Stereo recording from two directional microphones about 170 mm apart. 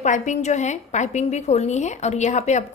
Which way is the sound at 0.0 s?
45° left (ahead or behind).